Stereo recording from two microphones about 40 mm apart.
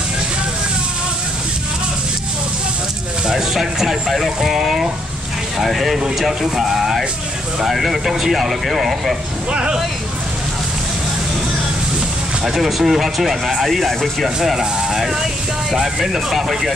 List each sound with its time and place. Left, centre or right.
3.3 s a sound: centre
5.6 s speech: centre
9.5 s speech: right
12.4 s speech: centre